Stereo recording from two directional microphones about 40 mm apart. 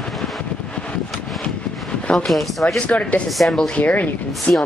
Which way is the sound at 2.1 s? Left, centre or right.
Centre.